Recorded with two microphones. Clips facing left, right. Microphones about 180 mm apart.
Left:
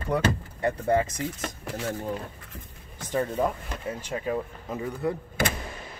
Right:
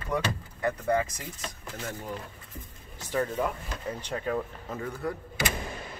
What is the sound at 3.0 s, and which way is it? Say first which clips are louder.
Speech: left 3 dB; 20° left (ahead or behind).